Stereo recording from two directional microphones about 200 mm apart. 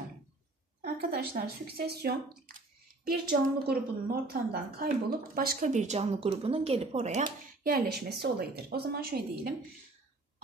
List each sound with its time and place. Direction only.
0.8 s a woman's voice: 50° right (ahead or behind)
7.6 s a woman's voice: 50° right (ahead or behind)